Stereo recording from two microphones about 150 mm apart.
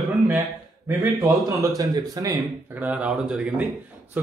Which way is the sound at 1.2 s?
25° right (ahead or behind).